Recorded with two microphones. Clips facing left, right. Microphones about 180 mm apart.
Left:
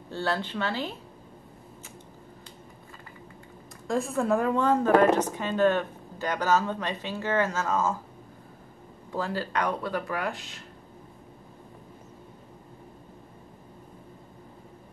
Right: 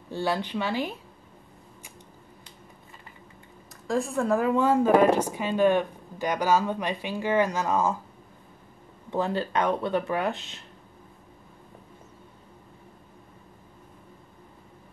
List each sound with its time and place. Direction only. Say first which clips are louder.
0.1 s speech: right 2 dB; 15° right (ahead or behind)
3.8 s speech: right 1 dB; centre (ahead or behind); by 7.9 s 15° right (ahead or behind)
9.1 s speech: right 3 dB; 20° right (ahead or behind)